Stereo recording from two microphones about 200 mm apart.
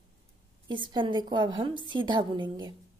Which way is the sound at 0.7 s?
25° right (ahead or behind).